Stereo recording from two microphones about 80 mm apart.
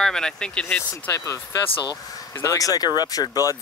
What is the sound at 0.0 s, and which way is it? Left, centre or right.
Speech, centre.